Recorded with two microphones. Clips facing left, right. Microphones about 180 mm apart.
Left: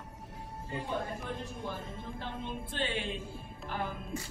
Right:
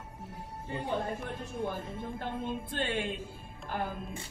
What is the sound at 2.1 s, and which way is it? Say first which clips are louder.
Music: right 4 dB; 50° right (ahead or behind).